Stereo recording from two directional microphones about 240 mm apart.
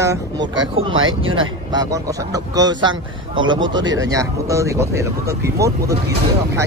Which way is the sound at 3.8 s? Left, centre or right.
Right.